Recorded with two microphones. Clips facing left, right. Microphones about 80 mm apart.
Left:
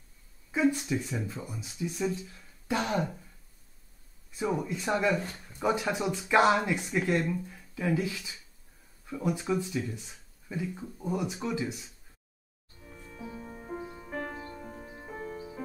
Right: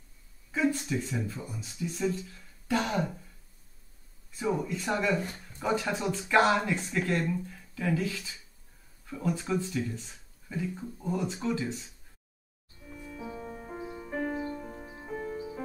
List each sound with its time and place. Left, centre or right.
0.5 s speech: centre
4.4 s speech: centre
12.9 s music: centre